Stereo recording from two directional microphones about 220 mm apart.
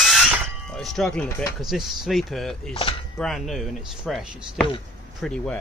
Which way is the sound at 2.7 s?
25° left (ahead or behind).